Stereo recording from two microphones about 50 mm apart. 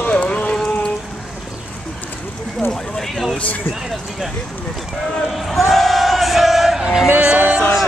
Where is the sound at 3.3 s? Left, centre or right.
Left.